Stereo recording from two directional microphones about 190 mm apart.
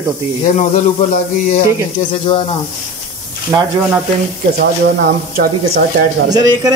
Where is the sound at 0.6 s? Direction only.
40° left (ahead or behind).